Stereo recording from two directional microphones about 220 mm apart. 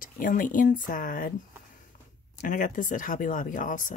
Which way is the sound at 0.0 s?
40° left (ahead or behind).